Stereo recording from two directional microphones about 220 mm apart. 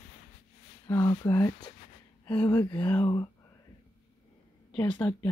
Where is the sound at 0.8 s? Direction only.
15° left (ahead or behind).